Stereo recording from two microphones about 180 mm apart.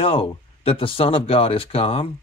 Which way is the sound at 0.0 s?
30° left (ahead or behind).